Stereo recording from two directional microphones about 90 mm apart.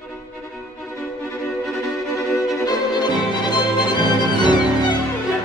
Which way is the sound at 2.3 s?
5° right (ahead or behind).